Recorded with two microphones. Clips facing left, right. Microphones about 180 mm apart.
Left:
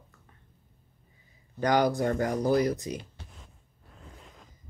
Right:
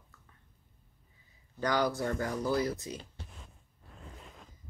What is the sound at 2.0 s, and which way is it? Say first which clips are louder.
Speech: left 6 dB; 45° left (ahead or behind).